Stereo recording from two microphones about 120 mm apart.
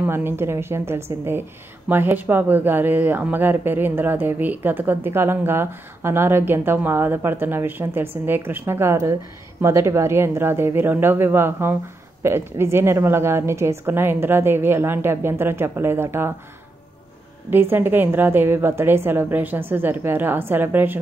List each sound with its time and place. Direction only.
0.0 s a woman's voice: 20° right (ahead or behind)
17.5 s speech: 15° right (ahead or behind)